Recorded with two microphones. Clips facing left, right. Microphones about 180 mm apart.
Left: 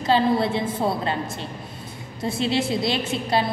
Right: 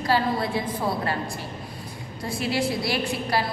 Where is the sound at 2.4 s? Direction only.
25° left (ahead or behind).